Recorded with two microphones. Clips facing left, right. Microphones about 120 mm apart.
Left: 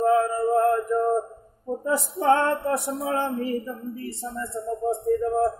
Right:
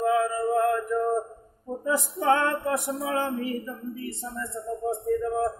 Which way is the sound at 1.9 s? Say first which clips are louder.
Left 2 dB; 40° left (ahead or behind).